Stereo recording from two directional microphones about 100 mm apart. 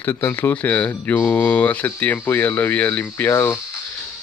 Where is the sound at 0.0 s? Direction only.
20° left (ahead or behind).